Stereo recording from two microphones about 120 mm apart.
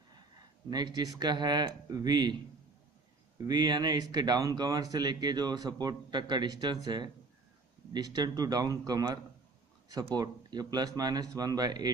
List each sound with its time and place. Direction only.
0.7 s speech: 35° right (ahead or behind)
3.3 s speech: 35° right (ahead or behind)